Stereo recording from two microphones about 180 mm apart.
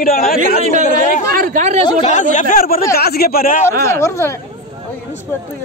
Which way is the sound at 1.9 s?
35° left (ahead or behind).